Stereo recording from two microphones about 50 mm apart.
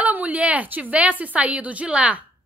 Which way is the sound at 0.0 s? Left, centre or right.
Right.